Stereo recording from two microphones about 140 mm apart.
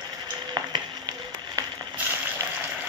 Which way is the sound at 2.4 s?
20° right (ahead or behind).